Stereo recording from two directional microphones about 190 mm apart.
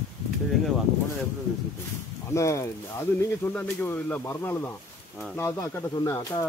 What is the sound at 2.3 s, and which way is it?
Speech, 15° left (ahead or behind).